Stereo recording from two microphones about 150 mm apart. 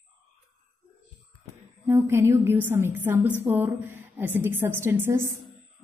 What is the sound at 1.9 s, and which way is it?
A woman's voice, 15° right (ahead or behind).